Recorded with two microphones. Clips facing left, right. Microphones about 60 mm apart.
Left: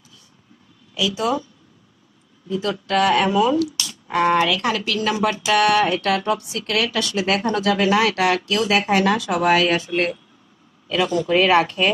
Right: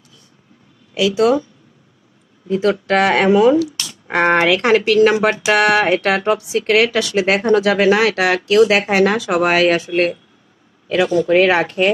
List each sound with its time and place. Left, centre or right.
0.9 s speech: right
2.4 s speech: right
3.8 s speech: right
11.0 s speech: right